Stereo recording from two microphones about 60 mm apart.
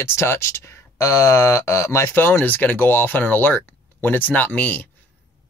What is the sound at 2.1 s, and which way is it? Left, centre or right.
Speech, left.